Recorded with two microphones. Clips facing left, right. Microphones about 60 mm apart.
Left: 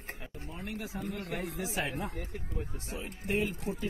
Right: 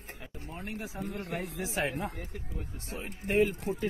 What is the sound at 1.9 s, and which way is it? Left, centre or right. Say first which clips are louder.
Speech: right 1 dB; right.